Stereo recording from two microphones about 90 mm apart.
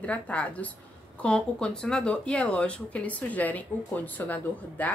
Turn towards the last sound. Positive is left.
turn(degrees=15)  # may be behind; listen again after turning